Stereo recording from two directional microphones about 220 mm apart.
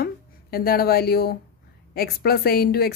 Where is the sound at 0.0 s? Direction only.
45° left (ahead or behind).